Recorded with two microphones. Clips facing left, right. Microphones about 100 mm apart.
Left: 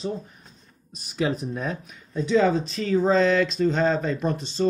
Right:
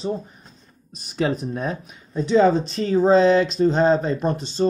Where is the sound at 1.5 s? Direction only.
15° right (ahead or behind).